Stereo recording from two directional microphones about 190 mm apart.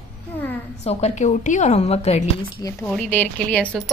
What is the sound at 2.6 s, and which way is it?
Speech, 15° left (ahead or behind).